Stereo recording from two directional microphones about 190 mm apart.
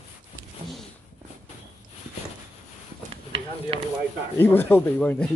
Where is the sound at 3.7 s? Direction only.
30° right (ahead or behind).